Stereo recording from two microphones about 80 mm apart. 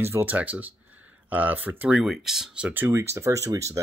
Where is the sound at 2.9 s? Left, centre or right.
Right.